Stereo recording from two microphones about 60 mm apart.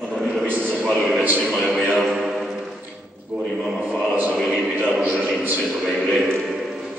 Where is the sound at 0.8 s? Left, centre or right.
Centre.